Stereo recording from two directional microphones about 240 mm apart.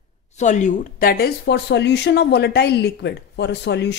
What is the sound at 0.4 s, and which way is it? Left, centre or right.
Speech, left.